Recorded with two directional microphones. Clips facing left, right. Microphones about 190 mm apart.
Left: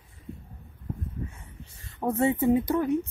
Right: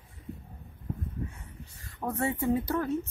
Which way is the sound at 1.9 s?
25° left (ahead or behind).